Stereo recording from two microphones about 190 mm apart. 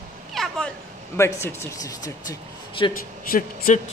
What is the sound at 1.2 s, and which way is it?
A man's voice, 15° left (ahead or behind).